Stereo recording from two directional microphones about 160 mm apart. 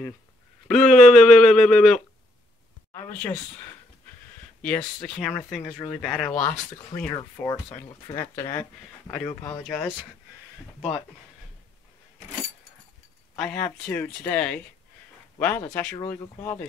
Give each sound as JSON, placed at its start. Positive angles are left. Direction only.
{"t": 0.7, "sound": "speech", "side_deg": 5}
{"t": 2.9, "sound": "a sound", "side_deg": 15}
{"t": 4.6, "sound": "speech", "side_deg": 10}
{"t": 6.9, "sound": "speech", "side_deg": 35}
{"t": 7.4, "sound": "speech", "side_deg": 15}
{"t": 13.4, "sound": "speech", "side_deg": 5}